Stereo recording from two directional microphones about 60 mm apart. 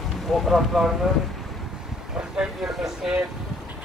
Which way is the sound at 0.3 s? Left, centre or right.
Centre.